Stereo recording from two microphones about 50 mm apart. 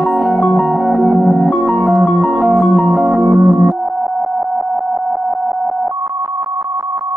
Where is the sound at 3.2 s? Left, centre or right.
Centre.